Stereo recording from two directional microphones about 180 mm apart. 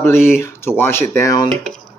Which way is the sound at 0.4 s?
15° left (ahead or behind).